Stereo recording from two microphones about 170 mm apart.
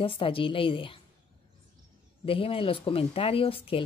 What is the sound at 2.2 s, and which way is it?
Speech, 35° left (ahead or behind).